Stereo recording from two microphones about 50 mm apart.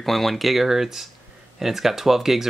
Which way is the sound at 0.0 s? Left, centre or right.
Centre.